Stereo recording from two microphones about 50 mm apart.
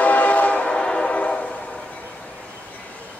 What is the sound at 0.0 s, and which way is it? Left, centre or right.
Train, left.